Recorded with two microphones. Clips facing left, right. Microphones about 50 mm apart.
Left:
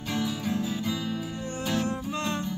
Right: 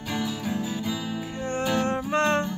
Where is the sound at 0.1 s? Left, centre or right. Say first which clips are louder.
Even; centre.